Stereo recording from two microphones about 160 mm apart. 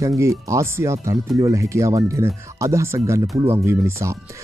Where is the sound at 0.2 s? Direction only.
20° right (ahead or behind).